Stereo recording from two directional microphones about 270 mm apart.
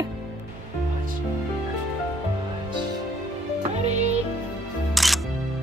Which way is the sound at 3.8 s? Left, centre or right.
Right.